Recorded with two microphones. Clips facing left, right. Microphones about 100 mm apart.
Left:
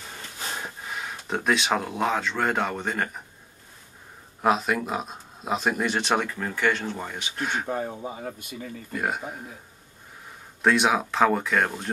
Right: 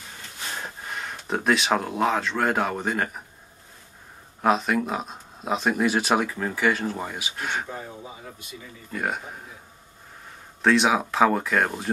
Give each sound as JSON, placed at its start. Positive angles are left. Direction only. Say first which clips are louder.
{"t": 0.6, "sound": "speech", "louder": "even", "side_deg": 0}
{"t": 4.4, "sound": "speech", "louder": "right 1 dB", "side_deg": 0}
{"t": 7.7, "sound": "speech", "louder": "left 7 dB", "side_deg": 45}
{"t": 8.9, "sound": "speech", "louder": "even", "side_deg": 0}
{"t": 10.6, "sound": "speech", "louder": "right 1 dB", "side_deg": 5}